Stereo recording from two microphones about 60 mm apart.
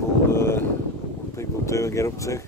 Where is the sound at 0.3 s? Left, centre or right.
Left.